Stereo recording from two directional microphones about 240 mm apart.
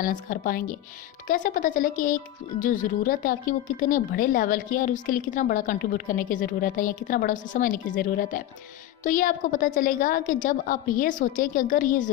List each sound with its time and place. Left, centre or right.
0.0 s speech: left